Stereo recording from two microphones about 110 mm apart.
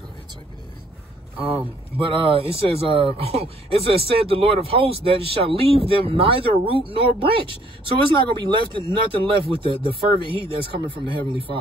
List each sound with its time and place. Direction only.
2.0 s speech: 55° right (ahead or behind)